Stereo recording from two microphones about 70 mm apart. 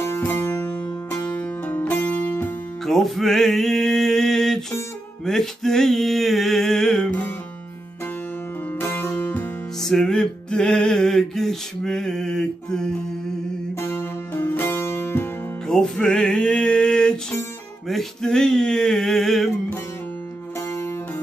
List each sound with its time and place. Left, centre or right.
0.2 s music: left
2.8 s music: centre
8.7 s music: left
9.8 s music: centre
13.7 s music: left
15.6 s music: centre
17.8 s male singing: centre
20.5 s music: left